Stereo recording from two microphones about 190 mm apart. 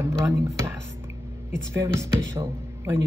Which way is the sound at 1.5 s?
15° right (ahead or behind).